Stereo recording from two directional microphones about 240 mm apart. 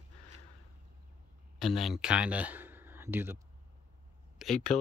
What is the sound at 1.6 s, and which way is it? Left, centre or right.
Speech, centre.